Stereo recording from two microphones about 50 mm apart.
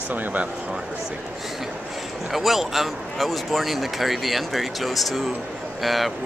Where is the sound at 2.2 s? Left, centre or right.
Centre.